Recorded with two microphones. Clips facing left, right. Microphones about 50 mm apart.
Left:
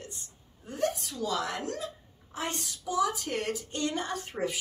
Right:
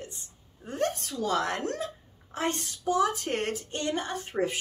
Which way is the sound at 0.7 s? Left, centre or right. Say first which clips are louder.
Right 1 dB; right.